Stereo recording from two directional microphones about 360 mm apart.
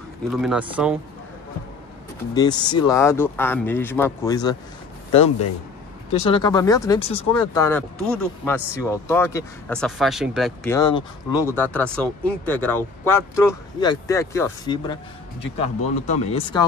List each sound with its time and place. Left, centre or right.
0.3 s speech: centre
2.3 s speech: centre
16.1 s speech: centre